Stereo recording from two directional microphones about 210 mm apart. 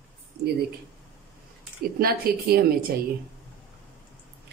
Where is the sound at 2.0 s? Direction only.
45° right (ahead or behind).